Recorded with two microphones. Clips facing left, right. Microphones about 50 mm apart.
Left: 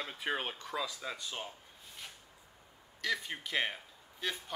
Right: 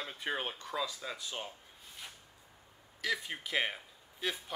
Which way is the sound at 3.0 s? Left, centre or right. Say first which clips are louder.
Even; centre.